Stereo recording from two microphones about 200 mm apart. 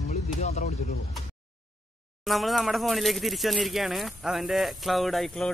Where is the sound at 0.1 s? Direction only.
35° left (ahead or behind).